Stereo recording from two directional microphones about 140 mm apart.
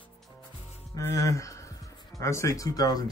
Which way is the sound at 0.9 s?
25° left (ahead or behind).